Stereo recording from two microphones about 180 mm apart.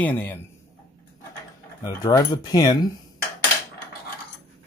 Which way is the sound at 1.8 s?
20° left (ahead or behind).